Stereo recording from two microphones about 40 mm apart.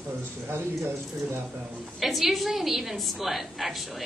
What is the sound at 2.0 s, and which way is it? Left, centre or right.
A woman's voice, centre.